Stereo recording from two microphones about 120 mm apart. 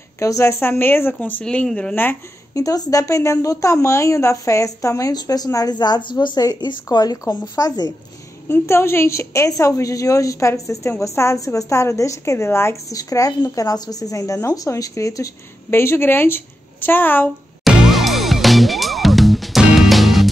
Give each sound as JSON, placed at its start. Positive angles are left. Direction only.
{"t": 0.2, "sound": "a woman's voice", "side_deg": 25}
{"t": 2.5, "sound": "speech", "side_deg": 30}
{"t": 8.5, "sound": "a woman's voice", "side_deg": 20}
{"t": 17.6, "sound": "music", "side_deg": 0}